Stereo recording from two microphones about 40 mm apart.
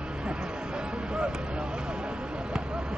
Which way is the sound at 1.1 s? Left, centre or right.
Right.